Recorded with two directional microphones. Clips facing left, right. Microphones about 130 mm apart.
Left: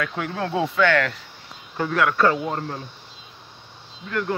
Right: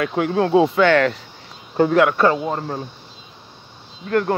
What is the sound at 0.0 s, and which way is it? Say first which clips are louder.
Speech: right 8 dB; 25° right (ahead or behind).